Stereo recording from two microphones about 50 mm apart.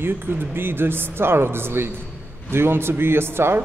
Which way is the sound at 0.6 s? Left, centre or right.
Right.